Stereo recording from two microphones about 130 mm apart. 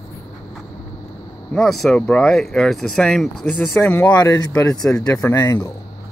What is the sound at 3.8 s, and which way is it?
Speech, 15° left (ahead or behind).